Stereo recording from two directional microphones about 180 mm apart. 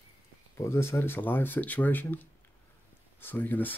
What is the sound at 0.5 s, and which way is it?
Speech, 15° left (ahead or behind).